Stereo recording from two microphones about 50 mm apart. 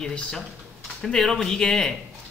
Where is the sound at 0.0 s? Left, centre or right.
Centre.